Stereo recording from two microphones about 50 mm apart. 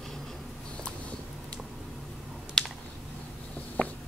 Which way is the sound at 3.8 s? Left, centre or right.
Left.